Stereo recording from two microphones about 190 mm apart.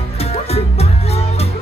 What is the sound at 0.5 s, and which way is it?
Music, 35° left (ahead or behind).